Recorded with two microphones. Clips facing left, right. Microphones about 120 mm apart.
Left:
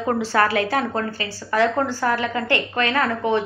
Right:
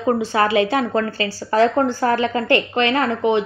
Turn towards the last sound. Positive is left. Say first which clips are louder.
# right 3 dB
turn(degrees=-20)  # may be behind; listen again after turning